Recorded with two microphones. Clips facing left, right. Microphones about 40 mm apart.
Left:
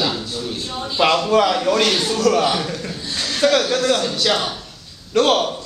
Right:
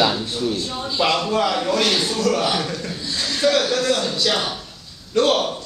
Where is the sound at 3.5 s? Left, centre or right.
Centre.